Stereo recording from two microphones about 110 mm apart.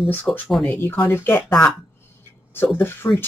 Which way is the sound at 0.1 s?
15° left (ahead or behind).